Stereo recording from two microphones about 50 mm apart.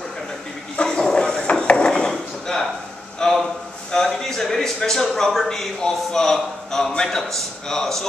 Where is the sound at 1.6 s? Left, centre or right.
Centre.